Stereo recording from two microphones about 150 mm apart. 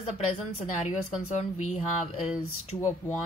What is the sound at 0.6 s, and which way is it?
Speech, 50° left (ahead or behind).